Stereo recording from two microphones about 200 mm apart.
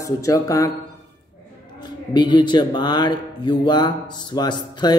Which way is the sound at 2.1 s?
20° left (ahead or behind).